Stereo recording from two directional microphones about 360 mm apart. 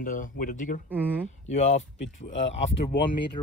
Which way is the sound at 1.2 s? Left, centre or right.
Centre.